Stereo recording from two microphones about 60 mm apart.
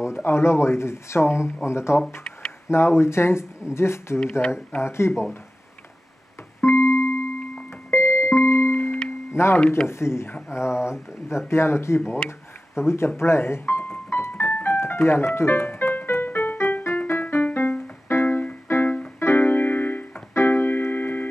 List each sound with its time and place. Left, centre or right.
0.0 s speech: left
6.6 s music: left
9.3 s speech: left
12.1 s music: left
20.3 s keyboard: left